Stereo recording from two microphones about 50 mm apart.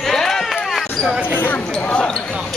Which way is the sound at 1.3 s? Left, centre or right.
Left.